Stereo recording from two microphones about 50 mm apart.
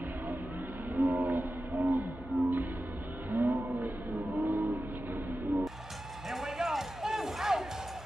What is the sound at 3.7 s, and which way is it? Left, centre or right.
Music, right.